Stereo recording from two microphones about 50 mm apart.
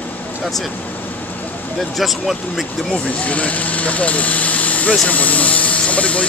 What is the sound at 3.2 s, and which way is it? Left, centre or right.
Speech, left.